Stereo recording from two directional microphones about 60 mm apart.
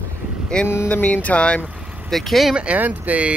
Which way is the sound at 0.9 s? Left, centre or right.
Left.